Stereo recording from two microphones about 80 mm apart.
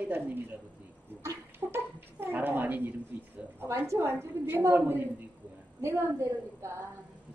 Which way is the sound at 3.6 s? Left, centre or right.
Right.